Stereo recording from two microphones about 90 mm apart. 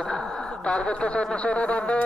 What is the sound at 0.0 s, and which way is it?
A man's voice, 5° left (ahead or behind).